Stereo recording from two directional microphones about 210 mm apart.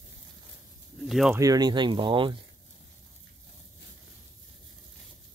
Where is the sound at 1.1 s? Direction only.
Centre (ahead or behind).